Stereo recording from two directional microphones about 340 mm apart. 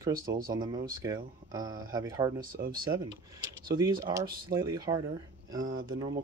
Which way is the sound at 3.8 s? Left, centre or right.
Centre.